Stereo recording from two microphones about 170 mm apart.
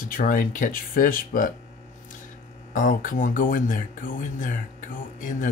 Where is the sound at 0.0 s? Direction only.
55° left (ahead or behind).